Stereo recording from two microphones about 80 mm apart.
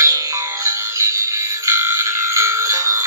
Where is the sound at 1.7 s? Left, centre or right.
Right.